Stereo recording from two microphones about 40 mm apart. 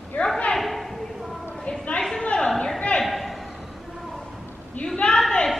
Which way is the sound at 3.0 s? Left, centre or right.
Centre.